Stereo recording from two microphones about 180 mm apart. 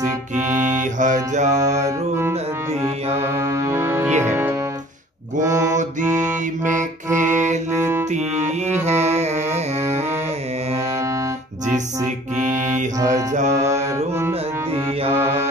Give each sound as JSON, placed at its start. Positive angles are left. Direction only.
{"t": 0.7, "sound": "music", "side_deg": -45}
{"t": 1.6, "sound": "music", "side_deg": -15}
{"t": 5.4, "sound": "mantra", "side_deg": -20}
{"t": 6.6, "sound": "music", "side_deg": -45}
{"t": 7.7, "sound": "music", "side_deg": -15}
{"t": 8.8, "sound": "carnatic music", "side_deg": -35}
{"t": 13.1, "sound": "music", "side_deg": -45}
{"t": 13.6, "sound": "music", "side_deg": -15}